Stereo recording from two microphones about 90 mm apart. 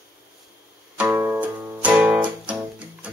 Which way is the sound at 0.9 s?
25° right (ahead or behind).